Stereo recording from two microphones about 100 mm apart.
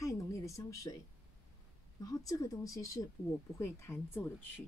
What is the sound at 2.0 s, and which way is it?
Speech, 35° left (ahead or behind).